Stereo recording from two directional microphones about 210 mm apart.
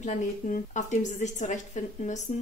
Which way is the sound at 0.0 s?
35° left (ahead or behind).